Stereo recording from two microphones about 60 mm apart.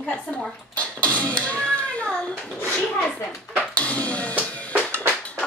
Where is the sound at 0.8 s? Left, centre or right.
Left.